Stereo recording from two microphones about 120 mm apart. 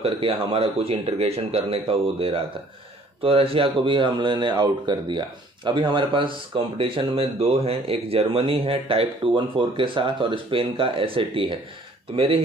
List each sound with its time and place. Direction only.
0.0 s speech: 50° right (ahead or behind)